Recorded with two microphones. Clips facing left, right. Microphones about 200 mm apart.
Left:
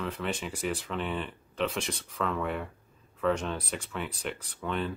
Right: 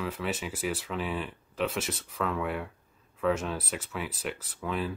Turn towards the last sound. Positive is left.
turn(degrees=-5)  # may be behind; listen again after turning